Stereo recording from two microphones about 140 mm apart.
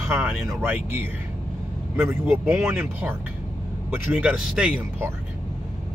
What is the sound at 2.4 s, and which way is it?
Speech, 15° right (ahead or behind).